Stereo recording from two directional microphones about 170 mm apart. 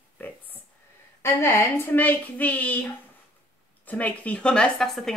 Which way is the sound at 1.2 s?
15° left (ahead or behind).